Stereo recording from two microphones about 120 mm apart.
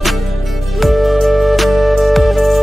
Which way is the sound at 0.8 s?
Centre (ahead or behind).